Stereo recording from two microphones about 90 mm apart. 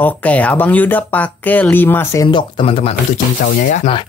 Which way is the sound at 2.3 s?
85° left.